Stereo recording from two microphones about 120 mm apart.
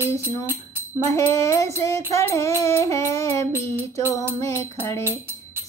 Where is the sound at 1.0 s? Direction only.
25° left (ahead or behind).